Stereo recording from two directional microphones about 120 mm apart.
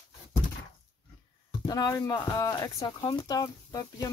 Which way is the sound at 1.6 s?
35° left (ahead or behind).